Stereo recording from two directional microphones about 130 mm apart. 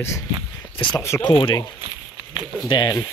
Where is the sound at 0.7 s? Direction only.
40° left (ahead or behind).